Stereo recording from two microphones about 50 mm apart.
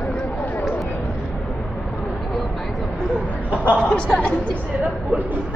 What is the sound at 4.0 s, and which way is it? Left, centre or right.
Speech, centre.